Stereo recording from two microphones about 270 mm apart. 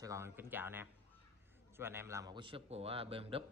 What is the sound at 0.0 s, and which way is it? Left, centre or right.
A man's voice, centre.